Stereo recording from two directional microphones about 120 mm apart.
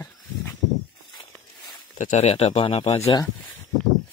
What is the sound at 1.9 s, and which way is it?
Speech, 90° left.